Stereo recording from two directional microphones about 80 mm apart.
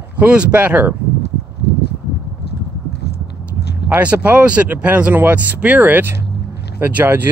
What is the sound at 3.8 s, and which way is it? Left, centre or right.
Speech, centre.